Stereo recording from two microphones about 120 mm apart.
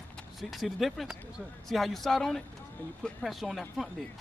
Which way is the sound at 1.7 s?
Centre (ahead or behind).